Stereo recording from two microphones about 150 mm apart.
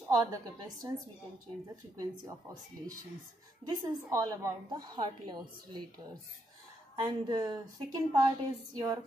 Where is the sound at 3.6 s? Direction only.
10° left (ahead or behind).